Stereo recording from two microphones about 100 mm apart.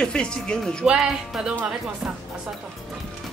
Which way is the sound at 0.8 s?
5° right (ahead or behind).